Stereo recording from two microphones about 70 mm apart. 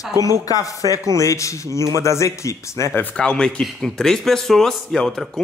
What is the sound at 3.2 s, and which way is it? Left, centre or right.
Speech, centre.